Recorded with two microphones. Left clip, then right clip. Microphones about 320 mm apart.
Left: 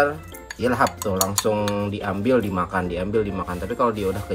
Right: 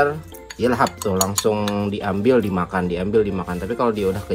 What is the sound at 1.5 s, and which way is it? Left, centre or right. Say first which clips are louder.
Speech: right 1 dB; right.